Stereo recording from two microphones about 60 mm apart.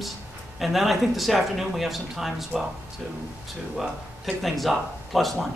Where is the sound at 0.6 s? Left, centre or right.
Centre.